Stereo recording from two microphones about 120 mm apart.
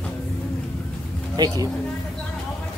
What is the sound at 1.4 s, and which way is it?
Speech, 35° right (ahead or behind).